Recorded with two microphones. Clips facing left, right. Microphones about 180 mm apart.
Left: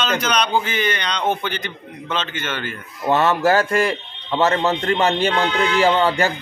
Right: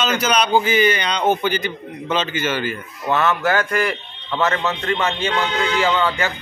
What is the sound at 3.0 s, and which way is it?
A man's voice, 30° left (ahead or behind).